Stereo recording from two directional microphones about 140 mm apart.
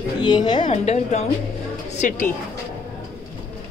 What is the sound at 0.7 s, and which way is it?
A woman's voice, 55° left (ahead or behind).